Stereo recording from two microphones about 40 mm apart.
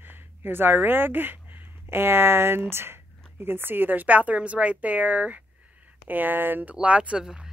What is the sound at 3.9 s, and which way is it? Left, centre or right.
A woman's voice, right.